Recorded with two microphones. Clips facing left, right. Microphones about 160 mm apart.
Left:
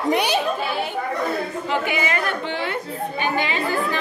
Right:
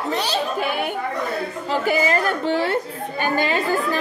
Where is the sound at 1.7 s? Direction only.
35° right (ahead or behind).